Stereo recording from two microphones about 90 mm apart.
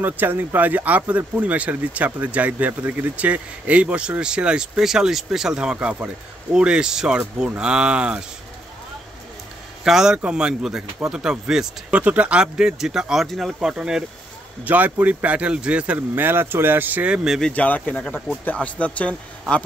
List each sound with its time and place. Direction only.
0.0 s speech: 20° right (ahead or behind)
9.8 s speech: 5° right (ahead or behind)
14.6 s speech: 20° right (ahead or behind)
17.4 s speech: 15° left (ahead or behind)